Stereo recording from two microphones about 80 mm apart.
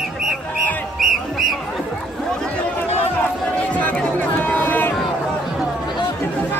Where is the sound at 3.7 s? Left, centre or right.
Centre.